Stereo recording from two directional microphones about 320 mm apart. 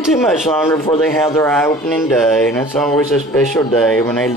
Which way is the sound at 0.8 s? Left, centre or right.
Left.